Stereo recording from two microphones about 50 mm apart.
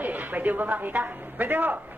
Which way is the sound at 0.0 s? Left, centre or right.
Right.